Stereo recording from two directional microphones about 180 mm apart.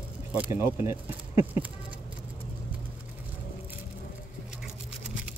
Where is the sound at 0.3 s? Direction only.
10° right (ahead or behind).